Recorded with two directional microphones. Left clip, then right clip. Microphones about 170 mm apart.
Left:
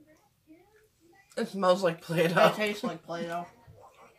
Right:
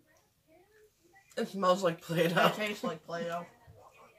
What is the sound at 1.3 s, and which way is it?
Speech, 10° right (ahead or behind).